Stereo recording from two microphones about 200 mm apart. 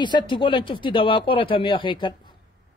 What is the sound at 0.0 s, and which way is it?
Speech, 25° left (ahead or behind).